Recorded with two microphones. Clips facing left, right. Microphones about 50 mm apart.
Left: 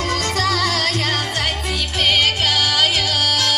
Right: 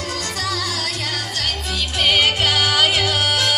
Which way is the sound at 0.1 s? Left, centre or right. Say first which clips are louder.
Left 5 dB; left.